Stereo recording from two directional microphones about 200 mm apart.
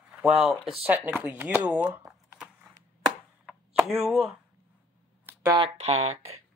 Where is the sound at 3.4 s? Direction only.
10° right (ahead or behind).